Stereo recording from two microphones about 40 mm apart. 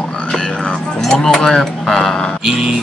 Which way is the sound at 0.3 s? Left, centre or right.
Centre.